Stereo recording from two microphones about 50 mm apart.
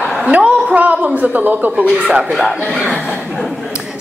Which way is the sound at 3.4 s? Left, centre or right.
Centre.